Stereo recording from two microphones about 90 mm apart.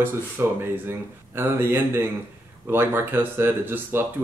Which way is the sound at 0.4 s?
30° right (ahead or behind).